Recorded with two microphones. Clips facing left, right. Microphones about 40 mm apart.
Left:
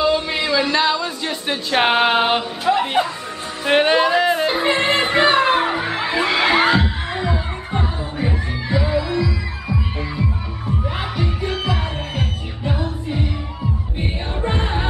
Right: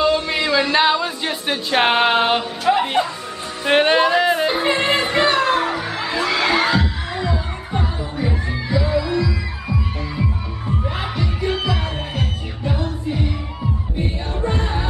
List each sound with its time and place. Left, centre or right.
0.0 s a sound: centre
0.7 s speech: centre
1.5 s speech: centre
3.6 s music: centre
5.1 s music: centre
11.0 s music: centre
11.6 s music: centre
13.9 s music: left